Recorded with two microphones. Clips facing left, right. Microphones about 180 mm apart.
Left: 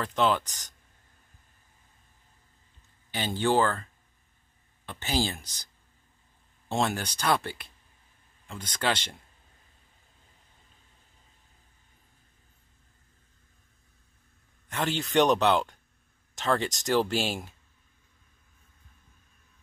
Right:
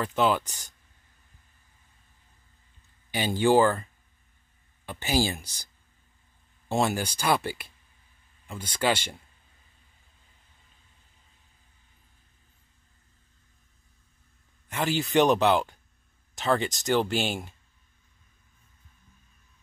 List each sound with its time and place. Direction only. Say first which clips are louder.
0.0 s speech: right 1 dB; 5° right (ahead or behind)
3.1 s speech: right 4 dB; 10° right (ahead or behind)
6.7 s speech: right 2 dB; 5° right (ahead or behind)
14.7 s speech: right 3 dB; 5° right (ahead or behind)